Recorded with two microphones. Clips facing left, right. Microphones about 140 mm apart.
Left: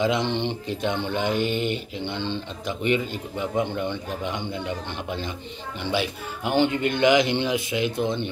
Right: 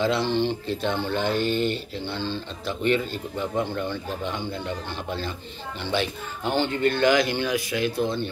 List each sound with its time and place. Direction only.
0.0 s speech: 15° left (ahead or behind)